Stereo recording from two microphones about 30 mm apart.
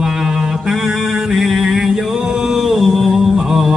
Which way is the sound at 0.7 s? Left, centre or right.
Centre.